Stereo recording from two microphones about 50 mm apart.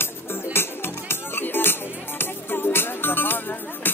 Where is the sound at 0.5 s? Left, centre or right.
Left.